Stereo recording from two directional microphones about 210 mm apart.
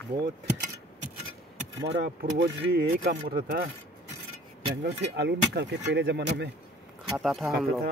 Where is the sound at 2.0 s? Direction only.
50° right (ahead or behind).